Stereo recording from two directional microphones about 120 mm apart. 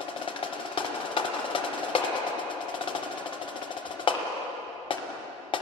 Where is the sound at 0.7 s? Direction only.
45° left (ahead or behind).